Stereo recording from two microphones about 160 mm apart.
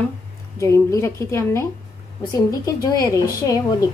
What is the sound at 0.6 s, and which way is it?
A woman's voice, 20° left (ahead or behind).